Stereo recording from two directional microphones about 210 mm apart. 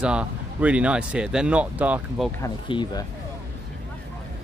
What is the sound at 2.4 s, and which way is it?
Speech, 20° left (ahead or behind).